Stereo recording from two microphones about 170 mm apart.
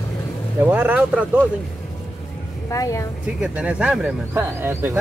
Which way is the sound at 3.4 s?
5° right (ahead or behind).